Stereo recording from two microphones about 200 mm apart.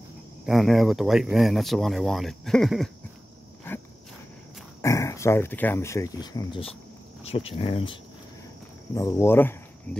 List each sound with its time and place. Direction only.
0.5 s speech: centre (ahead or behind)
3.7 s dog: 10° left (ahead or behind)
4.8 s speech: 15° left (ahead or behind)
8.9 s speech: 15° left (ahead or behind)